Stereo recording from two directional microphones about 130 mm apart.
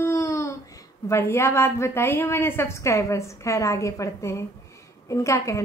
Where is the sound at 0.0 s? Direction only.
20° left (ahead or behind).